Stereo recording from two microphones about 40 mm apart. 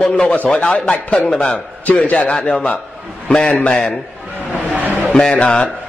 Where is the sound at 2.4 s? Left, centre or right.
Left.